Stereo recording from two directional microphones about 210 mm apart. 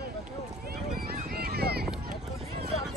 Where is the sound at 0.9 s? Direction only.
45° right (ahead or behind).